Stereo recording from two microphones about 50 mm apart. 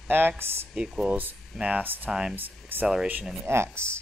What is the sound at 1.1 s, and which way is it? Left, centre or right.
Speech, right.